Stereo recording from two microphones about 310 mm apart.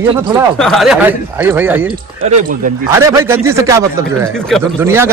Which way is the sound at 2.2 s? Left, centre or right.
Right.